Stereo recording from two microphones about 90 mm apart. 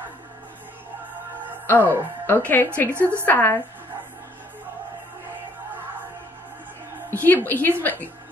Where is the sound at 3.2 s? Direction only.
20° left (ahead or behind).